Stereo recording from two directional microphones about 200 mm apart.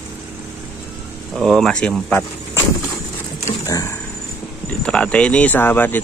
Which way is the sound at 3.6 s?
15° left (ahead or behind).